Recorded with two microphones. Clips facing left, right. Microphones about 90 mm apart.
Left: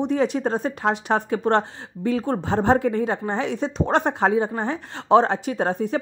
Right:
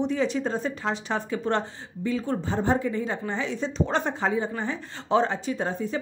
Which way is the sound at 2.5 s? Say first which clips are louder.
Left 6 dB; 75° left (ahead or behind).